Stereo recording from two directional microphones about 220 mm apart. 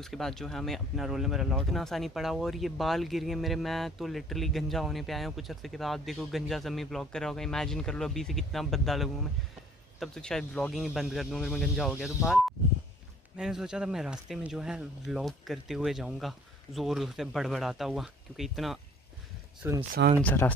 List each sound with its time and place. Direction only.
0.0 s speech: centre (ahead or behind)
19.9 s speech: 40° right (ahead or behind)
20.2 s speech: 5° left (ahead or behind)